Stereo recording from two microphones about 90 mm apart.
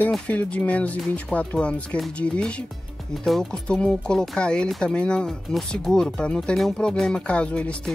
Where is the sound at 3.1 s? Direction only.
Centre (ahead or behind).